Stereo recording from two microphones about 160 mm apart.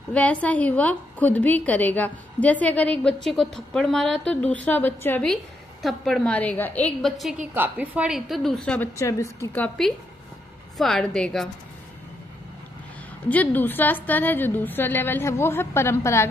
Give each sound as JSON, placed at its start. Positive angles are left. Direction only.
{"t": 0.1, "sound": "a woman's voice", "side_deg": 10}
{"t": 10.8, "sound": "a woman's voice", "side_deg": 0}
{"t": 13.3, "sound": "a woman's voice", "side_deg": 10}